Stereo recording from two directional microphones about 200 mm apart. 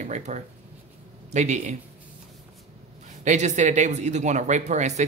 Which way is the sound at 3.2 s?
35° right (ahead or behind).